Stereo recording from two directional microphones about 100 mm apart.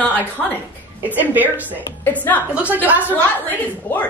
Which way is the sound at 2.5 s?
15° right (ahead or behind).